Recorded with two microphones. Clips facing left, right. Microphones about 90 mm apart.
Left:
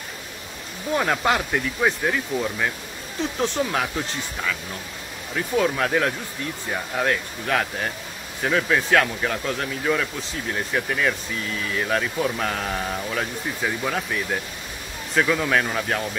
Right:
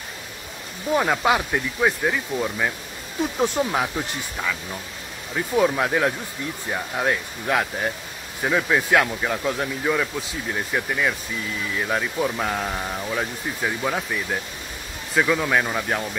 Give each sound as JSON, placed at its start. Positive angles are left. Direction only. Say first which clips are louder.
{"t": 0.9, "sound": "speech", "louder": "right 1 dB", "side_deg": -5}